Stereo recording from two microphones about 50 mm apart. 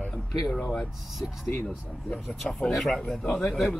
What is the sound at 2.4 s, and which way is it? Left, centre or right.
Speech, left.